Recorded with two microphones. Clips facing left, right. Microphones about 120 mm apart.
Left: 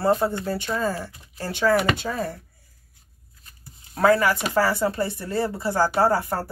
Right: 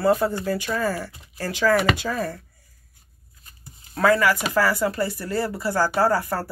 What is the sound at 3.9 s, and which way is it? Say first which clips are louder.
Speech: even; 25° left (ahead or behind).